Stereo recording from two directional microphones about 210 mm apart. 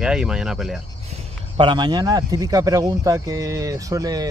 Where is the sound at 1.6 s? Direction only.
20° right (ahead or behind).